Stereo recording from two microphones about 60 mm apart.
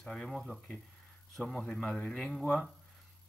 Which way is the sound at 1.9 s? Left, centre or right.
Centre.